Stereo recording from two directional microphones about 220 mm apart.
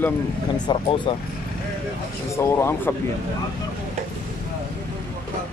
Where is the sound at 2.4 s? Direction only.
10° left (ahead or behind).